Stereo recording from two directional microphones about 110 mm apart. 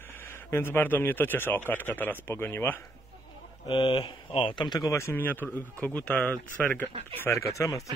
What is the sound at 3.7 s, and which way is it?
Speech, 50° left (ahead or behind).